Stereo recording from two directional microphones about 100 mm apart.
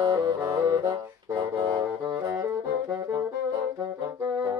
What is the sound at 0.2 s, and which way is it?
Music, 35° right (ahead or behind).